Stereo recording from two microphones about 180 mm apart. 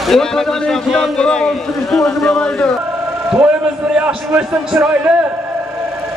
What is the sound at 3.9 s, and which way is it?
A man's voice, 5° right (ahead or behind).